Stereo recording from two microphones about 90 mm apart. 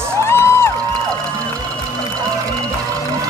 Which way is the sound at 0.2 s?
30° left (ahead or behind).